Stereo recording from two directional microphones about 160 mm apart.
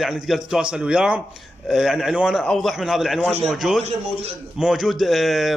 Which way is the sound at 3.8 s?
45° right (ahead or behind).